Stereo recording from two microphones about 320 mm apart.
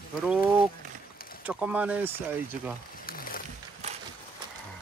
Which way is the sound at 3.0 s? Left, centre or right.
Left.